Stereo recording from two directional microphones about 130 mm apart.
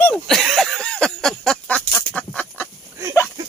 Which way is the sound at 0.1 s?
Centre (ahead or behind).